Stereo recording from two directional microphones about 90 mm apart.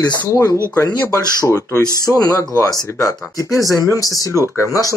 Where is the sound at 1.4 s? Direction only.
30° left (ahead or behind).